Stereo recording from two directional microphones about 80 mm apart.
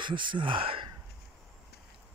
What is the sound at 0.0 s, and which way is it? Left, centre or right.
Speech, right.